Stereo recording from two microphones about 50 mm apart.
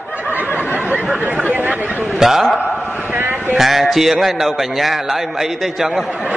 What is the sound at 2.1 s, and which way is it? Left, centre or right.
Speech, centre.